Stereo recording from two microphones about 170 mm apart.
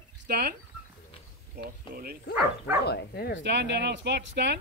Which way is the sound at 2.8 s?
70° left (ahead or behind).